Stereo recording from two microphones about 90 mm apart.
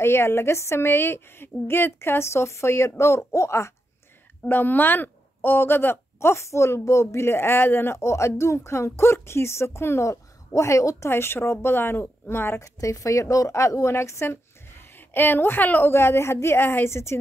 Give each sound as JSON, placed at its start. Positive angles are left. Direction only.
{"t": 0.0, "sound": "speech", "side_deg": 25}
{"t": 4.5, "sound": "speech", "side_deg": 20}